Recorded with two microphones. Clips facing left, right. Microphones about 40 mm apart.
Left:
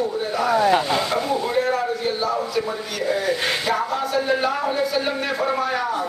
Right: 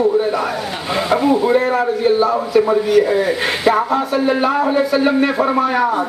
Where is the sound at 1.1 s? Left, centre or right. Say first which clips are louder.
Right 9 dB; centre.